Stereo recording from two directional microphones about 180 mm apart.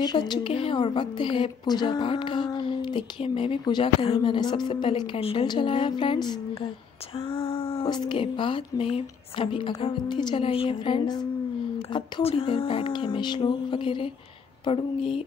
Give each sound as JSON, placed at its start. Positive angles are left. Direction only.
{"t": 0.0, "sound": "a woman's voice", "side_deg": 25}